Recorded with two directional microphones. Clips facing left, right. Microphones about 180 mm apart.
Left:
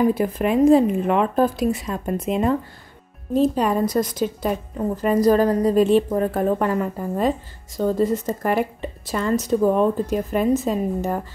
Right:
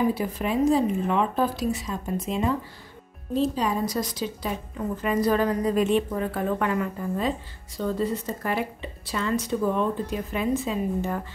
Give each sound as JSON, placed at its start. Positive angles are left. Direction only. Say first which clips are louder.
{"t": 0.1, "sound": "a woman's voice", "louder": "left 6 dB", "side_deg": 55}
{"t": 4.7, "sound": "a woman's voice", "louder": "left 5 dB", "side_deg": 40}